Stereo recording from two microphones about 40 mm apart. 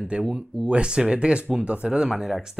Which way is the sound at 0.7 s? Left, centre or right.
Right.